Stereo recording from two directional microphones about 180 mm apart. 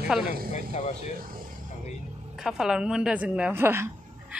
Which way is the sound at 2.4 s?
Centre (ahead or behind).